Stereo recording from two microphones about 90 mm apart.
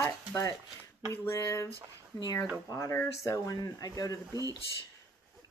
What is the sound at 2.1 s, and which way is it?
Speech, 50° left (ahead or behind).